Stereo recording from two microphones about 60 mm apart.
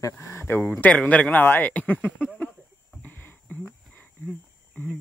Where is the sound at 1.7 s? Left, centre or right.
Left.